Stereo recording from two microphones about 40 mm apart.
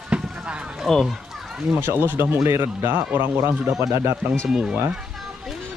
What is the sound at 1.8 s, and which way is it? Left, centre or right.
Speech, right.